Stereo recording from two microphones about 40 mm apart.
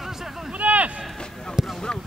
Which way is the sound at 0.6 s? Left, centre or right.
Right.